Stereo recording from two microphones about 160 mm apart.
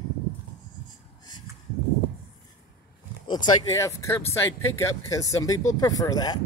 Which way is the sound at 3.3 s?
25° left (ahead or behind).